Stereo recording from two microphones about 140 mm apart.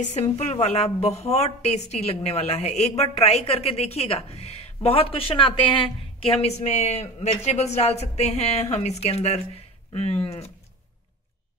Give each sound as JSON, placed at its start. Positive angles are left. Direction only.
{"t": 0.0, "sound": "a woman's voice", "side_deg": 55}